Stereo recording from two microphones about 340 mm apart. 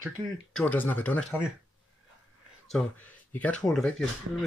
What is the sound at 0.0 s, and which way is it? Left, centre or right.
Speech, centre.